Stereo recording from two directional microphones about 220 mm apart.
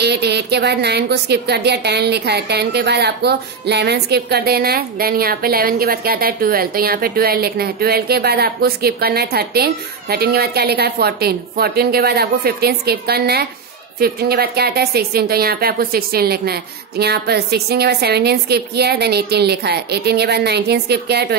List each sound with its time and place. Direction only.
0.0 s a woman's voice: 50° right (ahead or behind)